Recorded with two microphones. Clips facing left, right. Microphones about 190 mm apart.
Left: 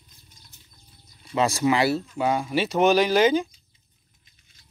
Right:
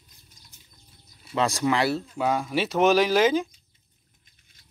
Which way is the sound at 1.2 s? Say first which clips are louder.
Left 2 dB; 5° left (ahead or behind).